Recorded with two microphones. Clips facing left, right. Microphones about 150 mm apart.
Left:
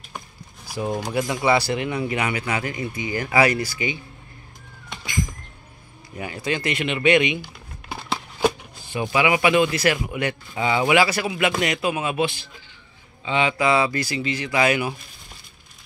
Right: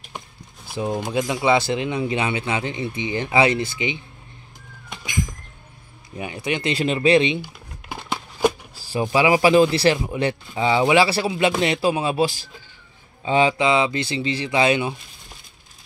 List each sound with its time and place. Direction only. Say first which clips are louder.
1.0 s speech: right 1 dB; 20° right (ahead or behind)
6.1 s speech: right 1 dB; 20° right (ahead or behind)
7.4 s a sound: even; 15° right (ahead or behind)
8.7 s speech: right 3 dB; 30° right (ahead or behind)
13.6 s speech: right 1 dB; 20° right (ahead or behind)